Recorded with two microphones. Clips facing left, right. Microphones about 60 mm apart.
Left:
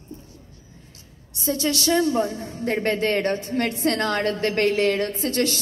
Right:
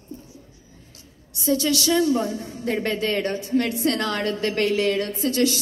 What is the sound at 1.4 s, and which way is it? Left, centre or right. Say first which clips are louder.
A woman's voice: right 1 dB; left.